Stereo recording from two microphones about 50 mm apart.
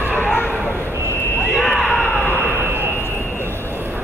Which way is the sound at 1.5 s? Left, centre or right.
Centre.